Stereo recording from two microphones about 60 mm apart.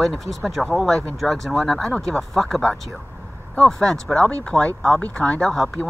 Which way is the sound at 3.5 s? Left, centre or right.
Centre.